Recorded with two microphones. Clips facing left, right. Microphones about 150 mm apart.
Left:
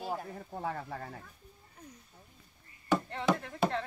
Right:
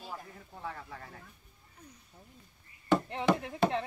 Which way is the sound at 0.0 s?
60° left (ahead or behind).